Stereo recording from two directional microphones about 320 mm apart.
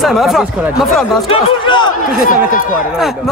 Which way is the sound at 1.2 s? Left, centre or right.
Centre.